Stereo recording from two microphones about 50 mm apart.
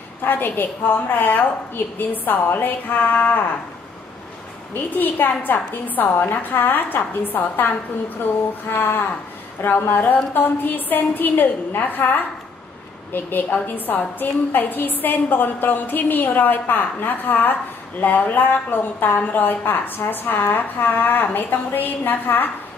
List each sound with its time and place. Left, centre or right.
0.2 s a woman's voice: left
4.9 s a woman's voice: left